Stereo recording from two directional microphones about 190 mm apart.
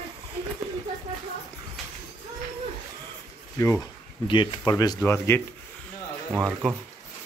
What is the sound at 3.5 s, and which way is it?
Speech, 15° left (ahead or behind).